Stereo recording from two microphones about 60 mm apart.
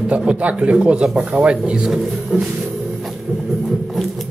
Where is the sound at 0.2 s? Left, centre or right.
Centre.